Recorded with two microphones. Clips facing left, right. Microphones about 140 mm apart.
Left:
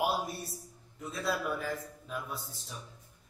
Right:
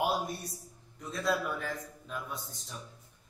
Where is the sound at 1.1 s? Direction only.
5° left (ahead or behind).